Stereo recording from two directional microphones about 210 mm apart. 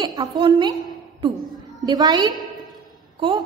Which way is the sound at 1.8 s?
20° right (ahead or behind).